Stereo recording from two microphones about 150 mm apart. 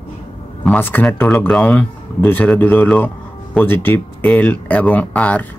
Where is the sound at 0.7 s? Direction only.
10° left (ahead or behind).